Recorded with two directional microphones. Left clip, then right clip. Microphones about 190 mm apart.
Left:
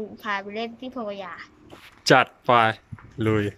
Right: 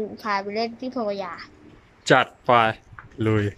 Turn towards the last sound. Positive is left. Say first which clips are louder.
# even
turn(degrees=0)  # may be behind; listen again after turning